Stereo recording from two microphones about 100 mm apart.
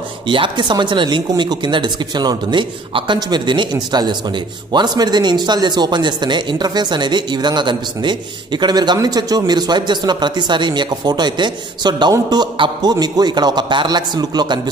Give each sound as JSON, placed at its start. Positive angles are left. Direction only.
{"t": 0.3, "sound": "speech", "side_deg": -55}